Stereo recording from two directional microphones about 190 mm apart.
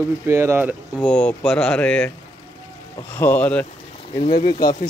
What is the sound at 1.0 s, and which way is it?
Speech, 5° left (ahead or behind).